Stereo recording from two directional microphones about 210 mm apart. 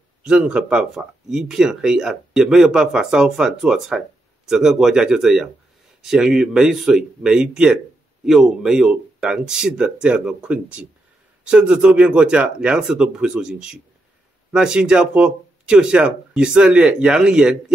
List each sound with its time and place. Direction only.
0.2 s speech: 5° right (ahead or behind)